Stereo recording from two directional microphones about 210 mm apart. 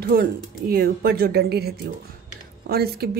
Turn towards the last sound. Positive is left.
turn(degrees=-50)  # may be behind; listen again after turning